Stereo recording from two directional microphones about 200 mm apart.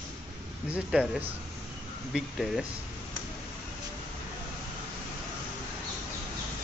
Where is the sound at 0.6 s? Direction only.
5° right (ahead or behind).